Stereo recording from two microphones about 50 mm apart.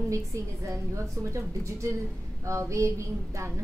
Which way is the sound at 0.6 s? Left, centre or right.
Right.